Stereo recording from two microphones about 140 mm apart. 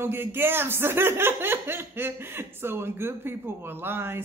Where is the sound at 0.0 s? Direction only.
15° right (ahead or behind).